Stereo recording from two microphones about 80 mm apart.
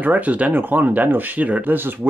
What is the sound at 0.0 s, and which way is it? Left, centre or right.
Speech, centre.